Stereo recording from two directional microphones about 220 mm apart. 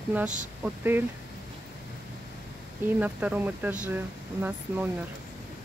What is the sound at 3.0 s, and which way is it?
Speech, 5° right (ahead or behind).